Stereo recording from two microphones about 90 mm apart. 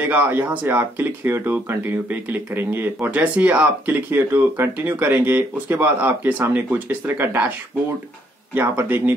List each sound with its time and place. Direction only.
0.0 s speech: 20° right (ahead or behind)
8.5 s speech: 25° right (ahead or behind)